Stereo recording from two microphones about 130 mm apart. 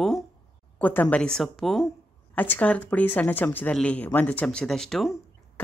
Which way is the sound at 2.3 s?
15° left (ahead or behind).